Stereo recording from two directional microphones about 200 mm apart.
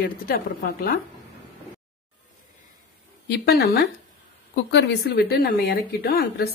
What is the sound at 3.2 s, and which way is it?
A woman's voice, 55° left (ahead or behind).